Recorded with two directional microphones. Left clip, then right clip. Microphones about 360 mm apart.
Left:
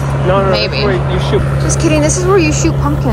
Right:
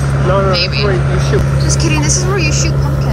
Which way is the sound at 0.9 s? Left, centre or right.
Centre.